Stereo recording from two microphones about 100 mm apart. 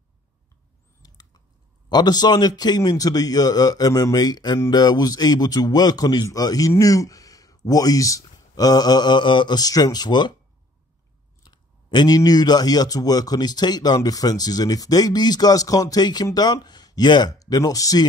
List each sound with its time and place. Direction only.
1.0 s chewing: 40° left (ahead or behind)
1.9 s speech: 45° left (ahead or behind)
11.4 s a sound: 45° left (ahead or behind)
12.2 s speech: 45° left (ahead or behind)